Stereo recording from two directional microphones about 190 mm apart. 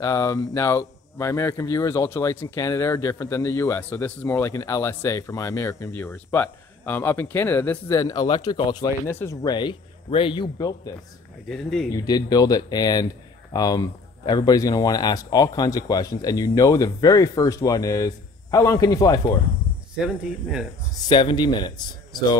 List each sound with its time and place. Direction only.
0.0 s speech: 15° left (ahead or behind)
11.4 s speech: 5° left (ahead or behind)
12.0 s speech: 20° left (ahead or behind)
21.1 s speech: 25° left (ahead or behind)